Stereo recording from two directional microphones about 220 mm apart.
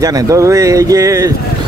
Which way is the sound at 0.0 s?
15° right (ahead or behind).